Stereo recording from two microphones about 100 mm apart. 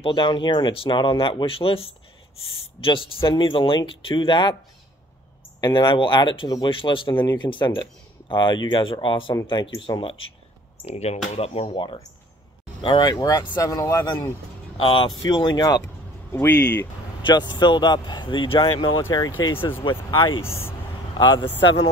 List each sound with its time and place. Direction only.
0.0 s speech: 55° left (ahead or behind)
5.6 s speech: 50° left (ahead or behind)
10.9 s speech: 90° left
11.3 s speech: 80° left
11.7 s speech: 55° left (ahead or behind)
13.1 s speech: 40° left (ahead or behind)
14.8 s speech: 60° left (ahead or behind); by 15.8 s 45° left (ahead or behind)
16.3 s speech: 25° left (ahead or behind)
16.5 s speech: 15° left (ahead or behind)
17.2 s speech: 50° left (ahead or behind)
19.8 s speech: 55° left (ahead or behind)
20.4 s speech: 25° left (ahead or behind)
21.2 s speech: 45° left (ahead or behind)